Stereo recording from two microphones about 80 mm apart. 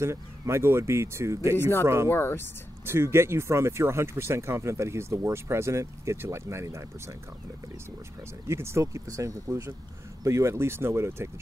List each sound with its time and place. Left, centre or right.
0.0 s speech: right
1.6 s speech: left
2.8 s speech: right
8.5 s speech: right